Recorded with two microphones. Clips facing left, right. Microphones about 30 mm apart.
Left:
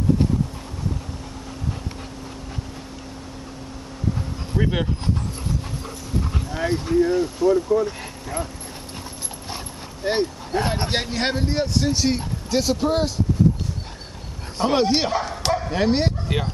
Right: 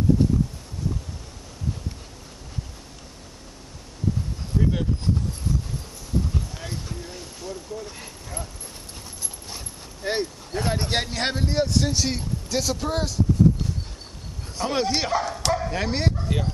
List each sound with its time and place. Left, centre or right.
4.6 s speech: left
6.3 s speech: left
7.2 s speech: centre
10.0 s speech: centre
14.6 s speech: left